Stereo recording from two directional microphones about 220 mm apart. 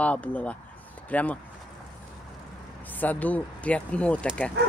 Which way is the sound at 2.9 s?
5° left (ahead or behind).